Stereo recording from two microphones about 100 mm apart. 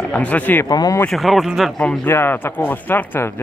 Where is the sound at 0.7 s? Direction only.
40° left (ahead or behind).